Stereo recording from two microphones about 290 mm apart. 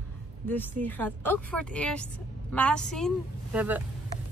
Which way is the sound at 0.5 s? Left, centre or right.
Centre.